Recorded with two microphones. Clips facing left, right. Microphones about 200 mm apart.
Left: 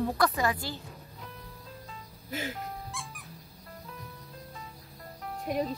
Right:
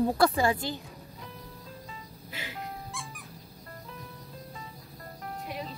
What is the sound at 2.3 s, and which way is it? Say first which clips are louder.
Speech: left 8 dB; 45° left (ahead or behind).